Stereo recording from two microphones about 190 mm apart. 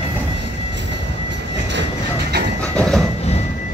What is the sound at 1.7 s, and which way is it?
Train, 60° right (ahead or behind).